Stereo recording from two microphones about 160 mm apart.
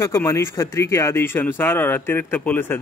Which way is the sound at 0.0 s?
15° left (ahead or behind).